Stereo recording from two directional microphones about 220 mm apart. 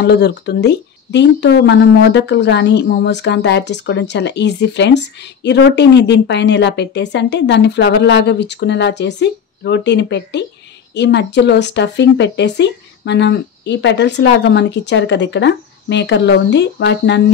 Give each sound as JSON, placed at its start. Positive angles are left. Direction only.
{"t": 0.0, "sound": "speech", "side_deg": 50}